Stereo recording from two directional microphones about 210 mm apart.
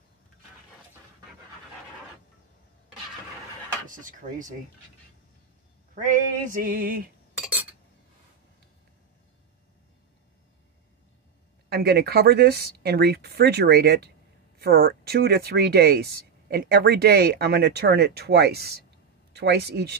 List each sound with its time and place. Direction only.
3.9 s speech: 40° right (ahead or behind)
6.0 s speech: 40° right (ahead or behind)
7.3 s chink: 5° right (ahead or behind)
11.7 s speech: 50° right (ahead or behind)